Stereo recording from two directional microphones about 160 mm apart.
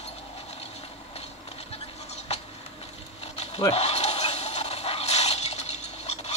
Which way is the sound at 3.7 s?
40° left (ahead or behind).